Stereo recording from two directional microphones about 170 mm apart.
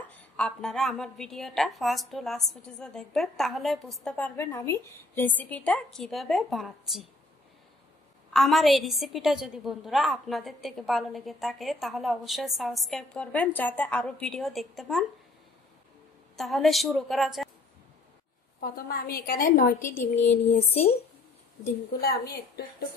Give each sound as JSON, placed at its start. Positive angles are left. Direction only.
{"t": 0.4, "sound": "a woman's voice", "side_deg": 5}
{"t": 8.3, "sound": "a woman's voice", "side_deg": 0}
{"t": 16.3, "sound": "a woman's voice", "side_deg": 0}
{"t": 18.6, "sound": "a woman's voice", "side_deg": 65}
{"t": 19.8, "sound": "speech", "side_deg": 10}
{"t": 20.4, "sound": "speech", "side_deg": 40}
{"t": 22.0, "sound": "a woman's voice", "side_deg": 65}